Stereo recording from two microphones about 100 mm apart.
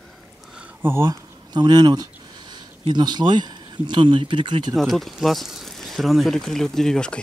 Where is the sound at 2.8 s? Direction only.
45° right (ahead or behind).